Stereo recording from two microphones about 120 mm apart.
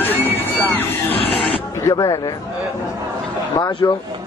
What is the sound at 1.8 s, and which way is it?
Speech, 25° left (ahead or behind).